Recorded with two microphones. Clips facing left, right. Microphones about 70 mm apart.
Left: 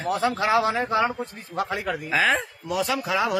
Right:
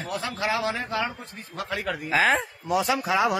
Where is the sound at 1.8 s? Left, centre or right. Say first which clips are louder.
Right 2 dB; centre.